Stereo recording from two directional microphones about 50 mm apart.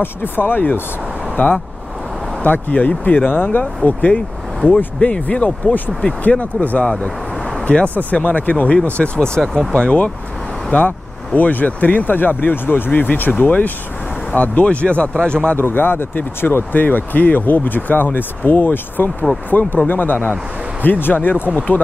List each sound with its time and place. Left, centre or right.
0.0 s speech: left
6.8 s speech: centre
9.4 s speech: centre
9.8 s speech: left
10.7 s speech: left
15.5 s speech: left